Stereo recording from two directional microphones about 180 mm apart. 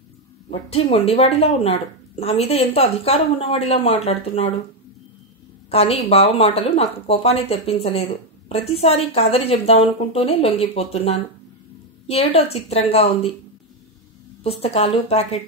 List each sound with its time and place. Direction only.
0.5 s a woman's voice: 35° left (ahead or behind)
5.7 s a woman's voice: 35° left (ahead or behind)
14.4 s a woman's voice: 35° left (ahead or behind)